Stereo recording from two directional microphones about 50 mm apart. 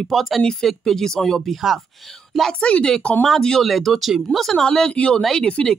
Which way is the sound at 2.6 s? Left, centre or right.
Centre.